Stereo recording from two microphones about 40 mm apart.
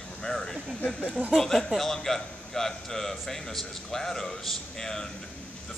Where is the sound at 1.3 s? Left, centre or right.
Centre.